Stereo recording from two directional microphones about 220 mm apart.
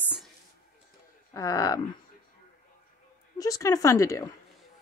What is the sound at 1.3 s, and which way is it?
Speech, 15° left (ahead or behind).